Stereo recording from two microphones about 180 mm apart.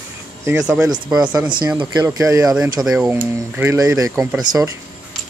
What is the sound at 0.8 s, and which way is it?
Speech, 20° right (ahead or behind).